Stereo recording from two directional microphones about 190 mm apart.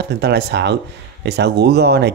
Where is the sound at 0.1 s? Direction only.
55° right (ahead or behind).